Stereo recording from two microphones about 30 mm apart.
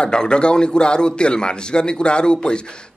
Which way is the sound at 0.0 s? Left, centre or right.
Left.